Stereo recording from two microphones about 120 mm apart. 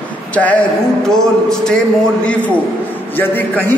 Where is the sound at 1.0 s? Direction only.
5° left (ahead or behind).